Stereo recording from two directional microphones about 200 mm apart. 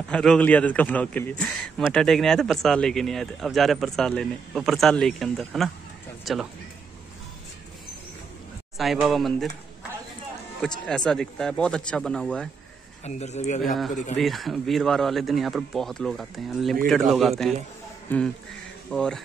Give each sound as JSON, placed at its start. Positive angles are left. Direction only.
{"t": 0.1, "sound": "a man's voice", "side_deg": 5}
{"t": 8.7, "sound": "a man's voice", "side_deg": 0}
{"t": 10.6, "sound": "a man's voice", "side_deg": 5}
{"t": 13.0, "sound": "a man's voice", "side_deg": 35}
{"t": 14.1, "sound": "a man's voice", "side_deg": 0}